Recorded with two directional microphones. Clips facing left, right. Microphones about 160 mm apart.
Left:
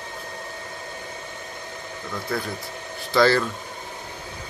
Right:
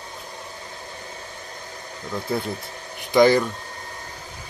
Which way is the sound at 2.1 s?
20° right (ahead or behind).